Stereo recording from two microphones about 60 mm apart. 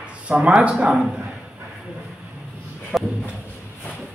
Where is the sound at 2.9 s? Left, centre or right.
Centre.